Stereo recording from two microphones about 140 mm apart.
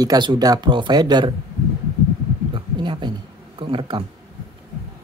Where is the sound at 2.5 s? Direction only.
35° right (ahead or behind).